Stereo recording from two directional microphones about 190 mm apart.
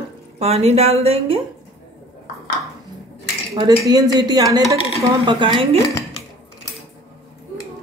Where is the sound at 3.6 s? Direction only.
20° right (ahead or behind).